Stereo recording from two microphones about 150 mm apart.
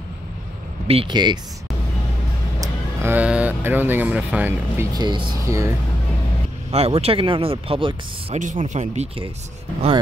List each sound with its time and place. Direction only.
0.8 s speech: 35° right (ahead or behind)
2.6 s speech: 15° right (ahead or behind)
4.9 s speech: 25° right (ahead or behind)
6.7 s speech: 45° right (ahead or behind)
8.4 s speech: 55° right (ahead or behind)